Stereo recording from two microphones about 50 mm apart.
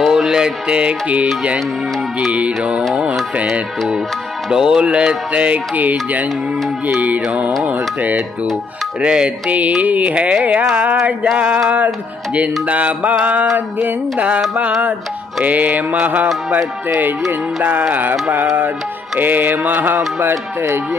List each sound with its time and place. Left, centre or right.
0.0 s mantra: centre
0.3 s music: centre
4.5 s music: centre; by 8.2 s right
9.0 s music: right
19.1 s music: right